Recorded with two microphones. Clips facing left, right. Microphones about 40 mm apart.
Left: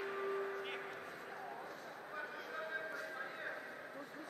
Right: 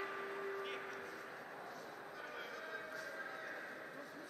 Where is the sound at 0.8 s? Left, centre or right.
Left.